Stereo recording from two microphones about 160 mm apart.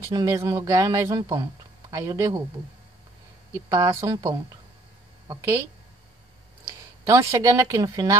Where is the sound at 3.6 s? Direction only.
20° right (ahead or behind).